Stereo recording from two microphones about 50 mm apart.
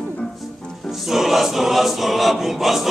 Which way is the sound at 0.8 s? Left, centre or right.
Centre.